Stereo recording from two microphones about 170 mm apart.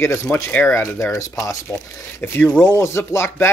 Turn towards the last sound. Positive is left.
turn(degrees=15)  # may be behind; listen again after turning